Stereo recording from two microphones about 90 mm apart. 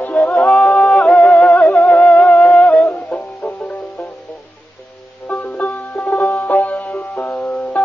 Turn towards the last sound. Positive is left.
turn(degrees=15)  # may be behind; listen again after turning